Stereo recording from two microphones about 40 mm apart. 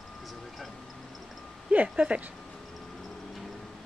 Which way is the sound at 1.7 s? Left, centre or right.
Right.